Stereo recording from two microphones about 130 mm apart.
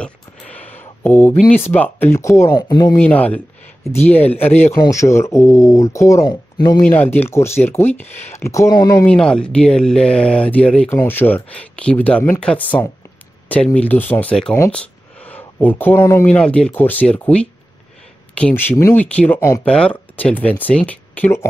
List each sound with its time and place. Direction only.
0.0 s a sound: 10° left (ahead or behind)
1.5 s speech: 15° left (ahead or behind)
2.5 s speech: 35° left (ahead or behind)
3.0 s speech: 10° left (ahead or behind)
4.7 s speech: 25° left (ahead or behind)
6.9 s speech: 15° left (ahead or behind)
9.0 s speech: 10° left (ahead or behind)
10.9 s speech: 20° left (ahead or behind)
14.7 s a sound: 10° left (ahead or behind)
16.3 s speech: 10° left (ahead or behind)